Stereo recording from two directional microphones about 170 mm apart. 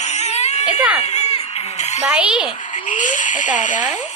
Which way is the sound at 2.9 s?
50° left (ahead or behind).